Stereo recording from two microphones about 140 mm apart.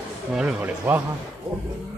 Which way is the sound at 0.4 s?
10° right (ahead or behind).